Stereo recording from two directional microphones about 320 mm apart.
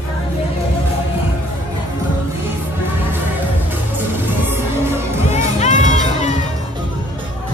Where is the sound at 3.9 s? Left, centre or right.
Centre.